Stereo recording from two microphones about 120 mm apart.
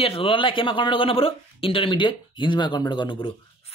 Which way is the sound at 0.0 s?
50° left (ahead or behind).